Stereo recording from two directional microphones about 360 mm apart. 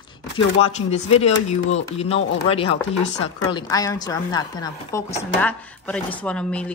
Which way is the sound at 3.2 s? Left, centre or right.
Centre.